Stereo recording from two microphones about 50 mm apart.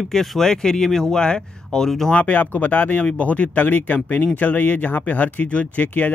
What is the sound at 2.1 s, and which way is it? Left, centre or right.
Speech, left.